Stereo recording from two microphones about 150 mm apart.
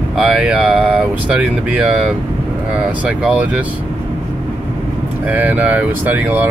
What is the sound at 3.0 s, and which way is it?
Speech, 10° right (ahead or behind).